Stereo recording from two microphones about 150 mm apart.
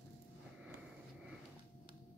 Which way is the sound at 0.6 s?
5° right (ahead or behind).